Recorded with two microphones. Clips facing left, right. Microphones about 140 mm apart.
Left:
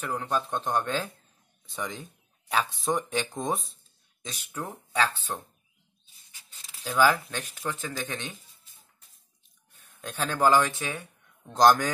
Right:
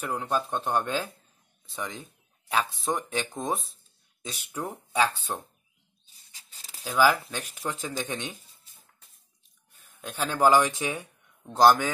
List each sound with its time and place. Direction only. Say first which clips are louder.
0.0 s speech: right 1 dB; 10° right (ahead or behind)
4.2 s speech: right 2 dB; 10° right (ahead or behind)
6.0 s a sound: even; 35° right (ahead or behind)
6.8 s speech: even; 5° right (ahead or behind)
9.8 s speech: even; 10° right (ahead or behind)
11.6 s speech: right 1 dB; 5° right (ahead or behind)